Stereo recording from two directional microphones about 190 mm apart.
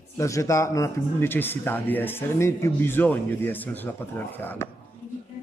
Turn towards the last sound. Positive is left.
turn(degrees=10)  # may be behind; listen again after turning